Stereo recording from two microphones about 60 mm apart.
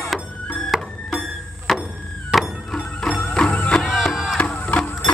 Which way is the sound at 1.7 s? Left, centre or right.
Centre.